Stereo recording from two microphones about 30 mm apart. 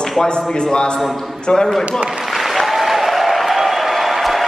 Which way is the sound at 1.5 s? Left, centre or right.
Left.